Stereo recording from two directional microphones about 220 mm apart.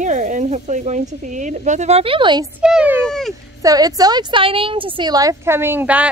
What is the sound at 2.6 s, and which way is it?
Speech, 5° right (ahead or behind).